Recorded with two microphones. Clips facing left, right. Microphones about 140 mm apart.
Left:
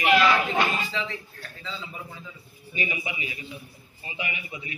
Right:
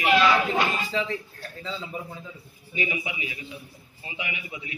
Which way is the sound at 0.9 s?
40° right (ahead or behind).